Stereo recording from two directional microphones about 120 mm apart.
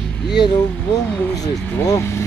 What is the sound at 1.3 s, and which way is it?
Speech, 30° left (ahead or behind).